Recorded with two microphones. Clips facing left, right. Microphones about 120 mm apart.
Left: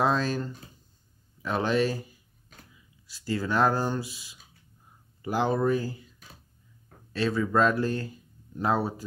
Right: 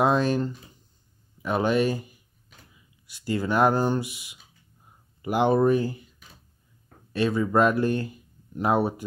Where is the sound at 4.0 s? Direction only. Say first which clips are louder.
Right 4 dB; 65° right (ahead or behind).